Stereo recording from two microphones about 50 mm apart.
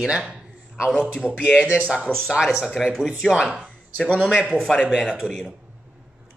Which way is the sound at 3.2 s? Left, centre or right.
Centre.